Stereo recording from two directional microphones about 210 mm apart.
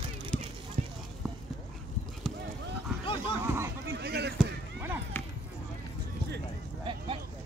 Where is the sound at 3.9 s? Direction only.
50° right (ahead or behind).